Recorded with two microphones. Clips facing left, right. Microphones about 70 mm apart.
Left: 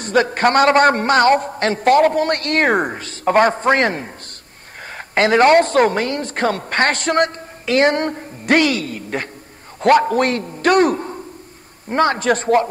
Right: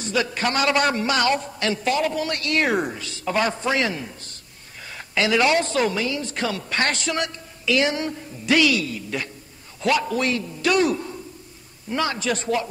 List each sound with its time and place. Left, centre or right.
0.0 s a woman's voice: left